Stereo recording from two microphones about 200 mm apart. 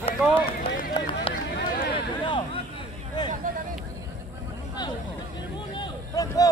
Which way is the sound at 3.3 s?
40° right (ahead or behind).